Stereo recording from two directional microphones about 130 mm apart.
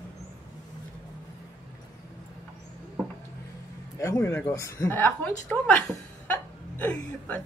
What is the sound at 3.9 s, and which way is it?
A man's voice, 20° left (ahead or behind).